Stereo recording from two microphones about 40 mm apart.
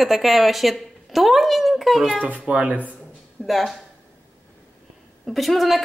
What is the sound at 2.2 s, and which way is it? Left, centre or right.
Speech, right.